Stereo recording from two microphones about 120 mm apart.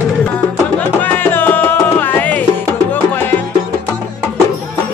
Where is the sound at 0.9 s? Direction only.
15° left (ahead or behind).